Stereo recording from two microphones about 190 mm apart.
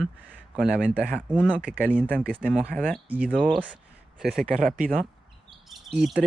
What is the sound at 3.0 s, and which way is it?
Speech, 10° right (ahead or behind).